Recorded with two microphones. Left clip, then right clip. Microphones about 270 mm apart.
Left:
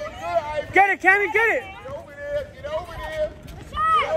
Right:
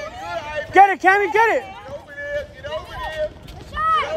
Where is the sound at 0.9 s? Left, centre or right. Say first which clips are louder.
Right 2 dB; centre.